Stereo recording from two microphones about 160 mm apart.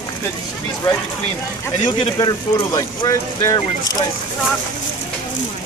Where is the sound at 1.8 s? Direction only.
25° left (ahead or behind).